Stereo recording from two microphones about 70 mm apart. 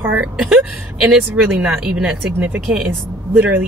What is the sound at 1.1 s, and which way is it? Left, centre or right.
Speech, centre.